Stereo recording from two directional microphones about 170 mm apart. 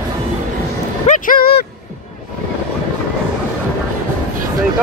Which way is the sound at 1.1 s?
55° left (ahead or behind).